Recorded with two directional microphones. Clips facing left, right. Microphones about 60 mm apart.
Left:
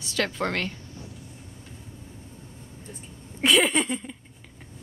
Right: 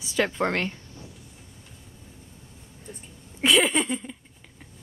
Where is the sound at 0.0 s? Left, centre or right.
Centre.